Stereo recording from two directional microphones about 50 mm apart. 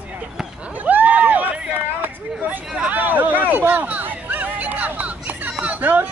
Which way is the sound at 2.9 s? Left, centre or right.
Right.